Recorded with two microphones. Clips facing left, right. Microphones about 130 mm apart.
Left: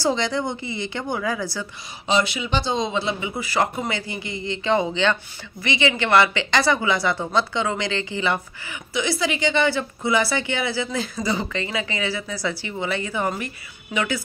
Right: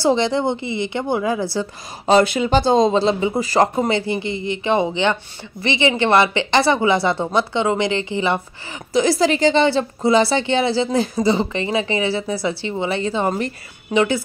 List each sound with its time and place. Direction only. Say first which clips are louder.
0.0 s speech: right 5 dB; 25° right (ahead or behind)
2.0 s speech: right 7 dB; 45° right (ahead or behind)
3.9 s speech: right 9 dB; 25° right (ahead or behind)
8.9 s speech: right 8 dB; 40° right (ahead or behind)